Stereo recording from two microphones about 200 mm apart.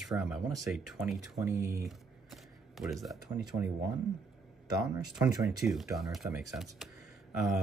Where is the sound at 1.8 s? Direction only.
Centre (ahead or behind).